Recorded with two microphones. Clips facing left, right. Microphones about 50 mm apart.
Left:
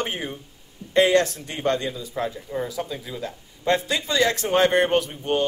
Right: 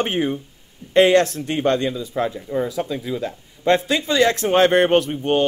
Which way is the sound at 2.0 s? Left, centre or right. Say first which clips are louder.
Right 5 dB; right.